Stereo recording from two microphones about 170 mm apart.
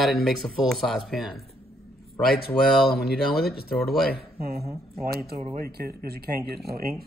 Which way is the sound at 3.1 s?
65° left (ahead or behind).